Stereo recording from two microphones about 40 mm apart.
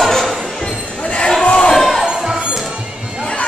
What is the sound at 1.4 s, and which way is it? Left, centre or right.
Basketball bounce, left.